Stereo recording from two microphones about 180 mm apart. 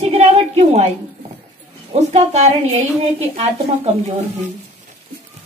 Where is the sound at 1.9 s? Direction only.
40° right (ahead or behind).